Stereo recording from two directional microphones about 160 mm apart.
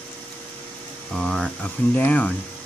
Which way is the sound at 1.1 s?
5° left (ahead or behind).